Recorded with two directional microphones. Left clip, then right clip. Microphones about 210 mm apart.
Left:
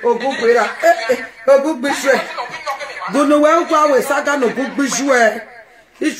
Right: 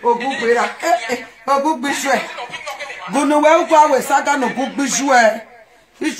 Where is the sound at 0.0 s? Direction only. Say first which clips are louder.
Left 1 dB; 30° left (ahead or behind).